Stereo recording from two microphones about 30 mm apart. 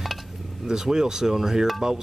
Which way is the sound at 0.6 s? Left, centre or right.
Right.